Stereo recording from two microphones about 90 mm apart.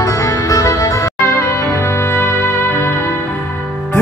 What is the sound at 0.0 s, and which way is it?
Music, 35° left (ahead or behind).